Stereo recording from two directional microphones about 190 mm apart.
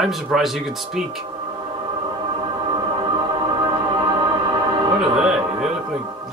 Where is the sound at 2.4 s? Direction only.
25° right (ahead or behind).